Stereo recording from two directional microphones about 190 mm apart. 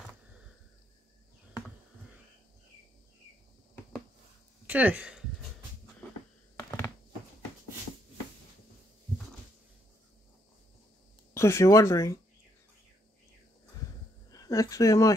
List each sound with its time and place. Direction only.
4.6 s speech: 10° right (ahead or behind)
11.3 s speech: 15° left (ahead or behind)
14.3 s speech: 20° left (ahead or behind)